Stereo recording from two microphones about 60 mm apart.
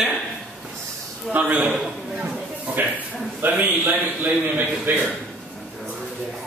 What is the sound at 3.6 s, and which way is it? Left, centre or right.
Speech, right.